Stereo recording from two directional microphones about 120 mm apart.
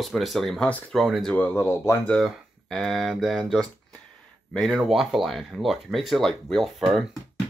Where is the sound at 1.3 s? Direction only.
20° left (ahead or behind).